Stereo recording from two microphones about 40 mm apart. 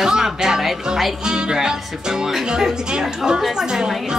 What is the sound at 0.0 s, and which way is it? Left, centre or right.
A woman's voice, centre.